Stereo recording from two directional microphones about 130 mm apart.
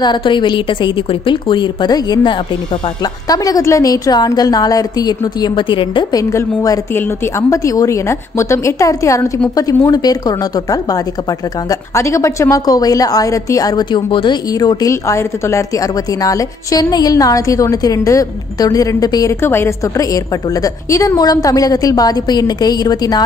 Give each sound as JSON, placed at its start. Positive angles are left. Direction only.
{"t": 0.0, "sound": "a woman's voice", "side_deg": 35}
{"t": 6.3, "sound": "a woman's voice", "side_deg": 25}
{"t": 19.4, "sound": "a woman's voice", "side_deg": 20}